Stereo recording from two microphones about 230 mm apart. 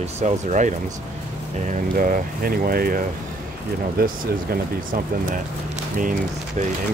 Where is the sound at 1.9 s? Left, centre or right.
Right.